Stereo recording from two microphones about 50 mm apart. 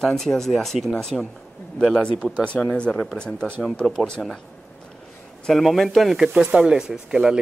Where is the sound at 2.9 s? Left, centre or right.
Centre.